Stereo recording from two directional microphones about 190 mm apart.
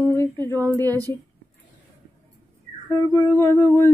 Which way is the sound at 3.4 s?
10° left (ahead or behind).